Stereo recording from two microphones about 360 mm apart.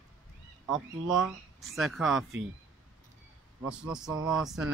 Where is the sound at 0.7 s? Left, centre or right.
Centre.